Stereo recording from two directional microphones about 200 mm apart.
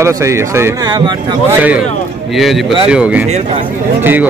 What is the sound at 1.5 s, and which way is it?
A man's voice, 10° right (ahead or behind).